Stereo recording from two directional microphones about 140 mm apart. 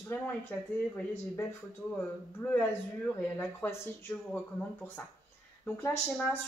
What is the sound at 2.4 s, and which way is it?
Speech, 15° left (ahead or behind).